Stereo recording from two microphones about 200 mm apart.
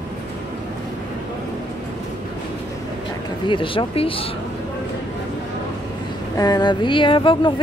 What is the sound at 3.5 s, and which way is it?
Speech, 25° left (ahead or behind).